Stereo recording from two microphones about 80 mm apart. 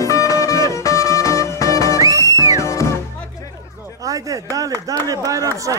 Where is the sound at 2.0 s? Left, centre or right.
Right.